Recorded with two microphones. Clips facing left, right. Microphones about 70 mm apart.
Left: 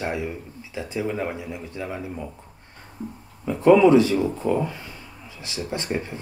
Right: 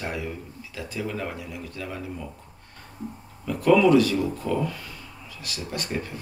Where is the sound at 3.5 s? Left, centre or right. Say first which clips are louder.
Left 3 dB; left.